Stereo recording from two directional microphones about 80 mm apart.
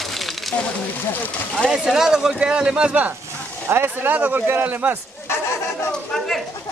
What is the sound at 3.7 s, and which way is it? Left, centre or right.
Speech, right.